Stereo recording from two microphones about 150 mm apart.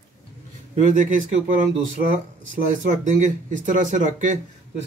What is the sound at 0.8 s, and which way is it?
Speech, 55° right (ahead or behind).